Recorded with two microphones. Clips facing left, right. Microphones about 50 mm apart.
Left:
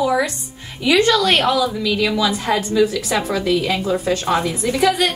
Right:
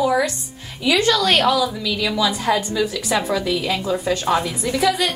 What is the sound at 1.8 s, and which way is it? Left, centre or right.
Speech, centre.